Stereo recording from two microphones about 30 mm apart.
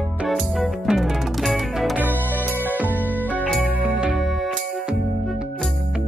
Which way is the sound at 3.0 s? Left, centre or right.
Left.